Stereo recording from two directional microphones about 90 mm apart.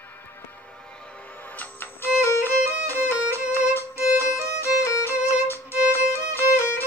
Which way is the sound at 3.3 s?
25° left (ahead or behind).